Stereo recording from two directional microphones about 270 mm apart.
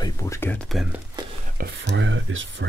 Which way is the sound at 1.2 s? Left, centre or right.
Centre.